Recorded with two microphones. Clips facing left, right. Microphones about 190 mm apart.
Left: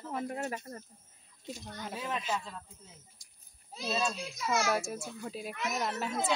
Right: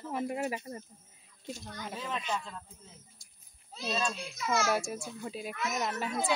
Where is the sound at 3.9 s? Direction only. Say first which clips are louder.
Left 1 dB; centre (ahead or behind).